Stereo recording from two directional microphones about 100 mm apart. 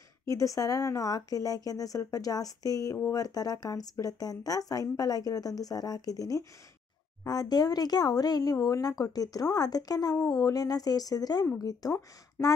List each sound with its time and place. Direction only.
0.2 s speech: 35° left (ahead or behind)